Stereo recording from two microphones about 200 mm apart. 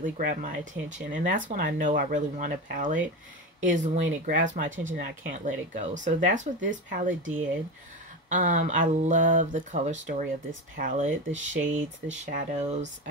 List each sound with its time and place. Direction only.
0.0 s speech: 45° right (ahead or behind)